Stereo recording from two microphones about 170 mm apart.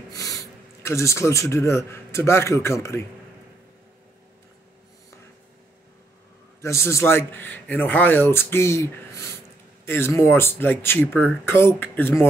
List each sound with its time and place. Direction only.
0.1 s speech: 20° left (ahead or behind)
6.6 s speech: 15° left (ahead or behind)